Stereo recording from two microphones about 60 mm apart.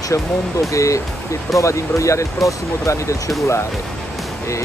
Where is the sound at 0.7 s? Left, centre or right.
Left.